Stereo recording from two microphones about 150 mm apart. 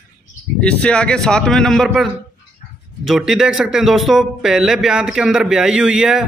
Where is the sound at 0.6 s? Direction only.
5° left (ahead or behind).